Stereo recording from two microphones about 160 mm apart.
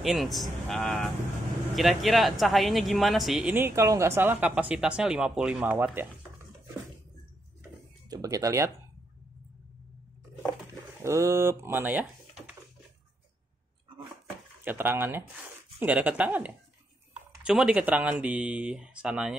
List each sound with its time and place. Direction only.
0.0 s speech: centre (ahead or behind)
8.1 s speech: 20° right (ahead or behind)
11.0 s speech: 20° right (ahead or behind)
14.6 s speech: 10° right (ahead or behind)